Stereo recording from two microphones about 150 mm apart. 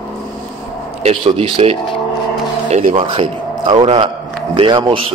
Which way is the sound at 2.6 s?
50° right (ahead or behind).